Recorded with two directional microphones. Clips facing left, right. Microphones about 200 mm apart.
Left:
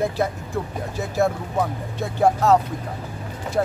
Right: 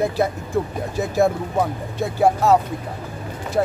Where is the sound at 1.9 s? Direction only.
10° right (ahead or behind).